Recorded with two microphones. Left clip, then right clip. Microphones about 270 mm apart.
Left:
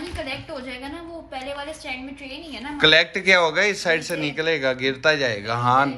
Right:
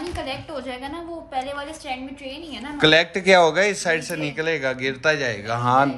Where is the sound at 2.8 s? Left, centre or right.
Centre.